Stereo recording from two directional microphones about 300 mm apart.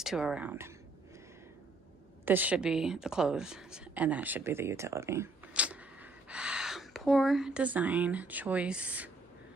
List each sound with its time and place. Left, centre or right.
0.0 s speech: centre
2.2 s speech: centre